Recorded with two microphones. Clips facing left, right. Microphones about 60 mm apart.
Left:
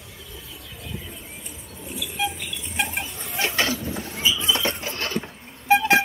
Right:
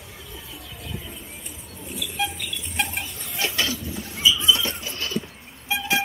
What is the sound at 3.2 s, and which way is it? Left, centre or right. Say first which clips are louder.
Rodents: left 3 dB; left.